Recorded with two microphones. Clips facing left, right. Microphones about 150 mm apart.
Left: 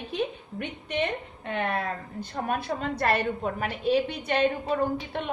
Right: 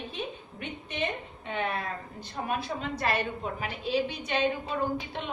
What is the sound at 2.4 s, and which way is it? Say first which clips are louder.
A woman's voice: left 3 dB; 55° left (ahead or behind).